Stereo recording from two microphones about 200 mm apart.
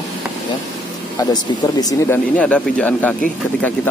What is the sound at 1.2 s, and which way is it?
Speech, 15° left (ahead or behind).